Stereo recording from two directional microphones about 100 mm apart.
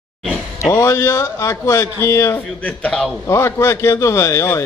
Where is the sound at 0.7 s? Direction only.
30° left (ahead or behind).